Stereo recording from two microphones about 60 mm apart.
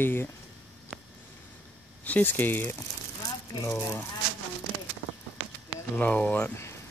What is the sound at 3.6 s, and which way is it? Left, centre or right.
Speech, left.